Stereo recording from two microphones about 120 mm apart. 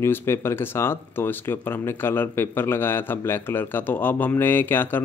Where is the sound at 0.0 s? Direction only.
20° left (ahead or behind).